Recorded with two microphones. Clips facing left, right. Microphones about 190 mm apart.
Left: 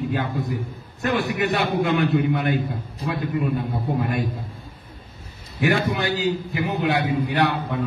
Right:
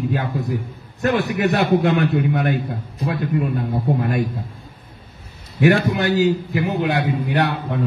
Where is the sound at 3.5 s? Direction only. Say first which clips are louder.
Right 3 dB; 50° right (ahead or behind).